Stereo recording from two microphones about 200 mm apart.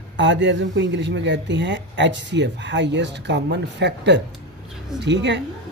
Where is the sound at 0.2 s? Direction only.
65° right (ahead or behind).